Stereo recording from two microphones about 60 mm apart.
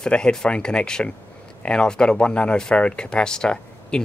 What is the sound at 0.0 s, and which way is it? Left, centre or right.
Speech, centre.